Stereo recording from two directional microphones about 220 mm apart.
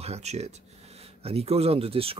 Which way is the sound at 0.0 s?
30° right (ahead or behind).